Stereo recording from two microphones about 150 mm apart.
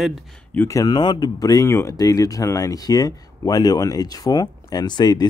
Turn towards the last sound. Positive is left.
turn(degrees=30)  # may be behind; listen again after turning